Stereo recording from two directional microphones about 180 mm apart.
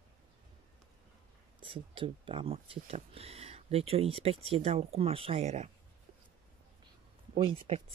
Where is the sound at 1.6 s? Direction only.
30° right (ahead or behind).